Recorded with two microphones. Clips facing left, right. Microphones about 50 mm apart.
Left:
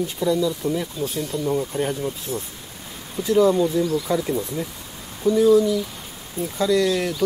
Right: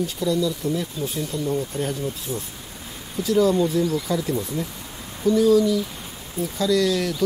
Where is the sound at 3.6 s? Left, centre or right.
Centre.